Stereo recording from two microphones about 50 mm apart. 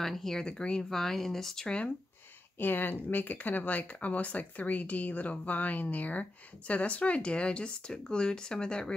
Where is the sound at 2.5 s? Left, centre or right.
Left.